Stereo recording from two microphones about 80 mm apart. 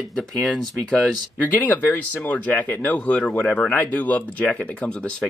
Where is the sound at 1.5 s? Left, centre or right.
Left.